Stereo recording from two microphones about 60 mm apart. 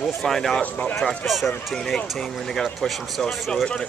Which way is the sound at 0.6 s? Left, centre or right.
Centre.